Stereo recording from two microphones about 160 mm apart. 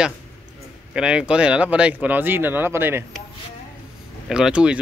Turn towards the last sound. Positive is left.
turn(degrees=-5)  # may be behind; listen again after turning